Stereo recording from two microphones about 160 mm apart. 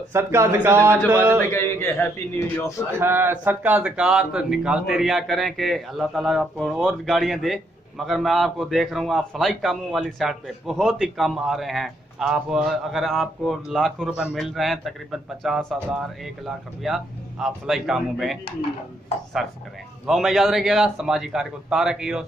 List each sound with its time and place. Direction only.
0.1 s a man's voice: 15° right (ahead or behind)
1.5 s a man's voice: 15° left (ahead or behind)
3.0 s speech: 15° right (ahead or behind)
20.1 s speech: centre (ahead or behind)